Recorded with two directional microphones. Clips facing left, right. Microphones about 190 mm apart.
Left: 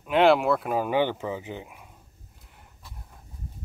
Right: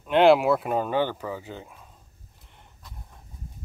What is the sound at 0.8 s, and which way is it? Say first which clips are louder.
Speech: left 1 dB; 15° left (ahead or behind).